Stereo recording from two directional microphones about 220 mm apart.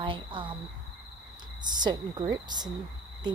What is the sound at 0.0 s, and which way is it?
Speech, 20° right (ahead or behind).